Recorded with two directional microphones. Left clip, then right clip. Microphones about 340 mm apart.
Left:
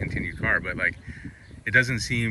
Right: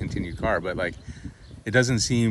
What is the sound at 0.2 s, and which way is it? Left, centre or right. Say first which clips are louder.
Speech: even; right.